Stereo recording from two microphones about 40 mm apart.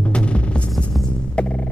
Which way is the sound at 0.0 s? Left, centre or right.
Left.